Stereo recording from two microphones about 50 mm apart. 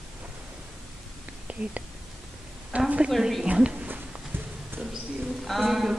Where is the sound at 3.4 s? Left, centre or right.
Right.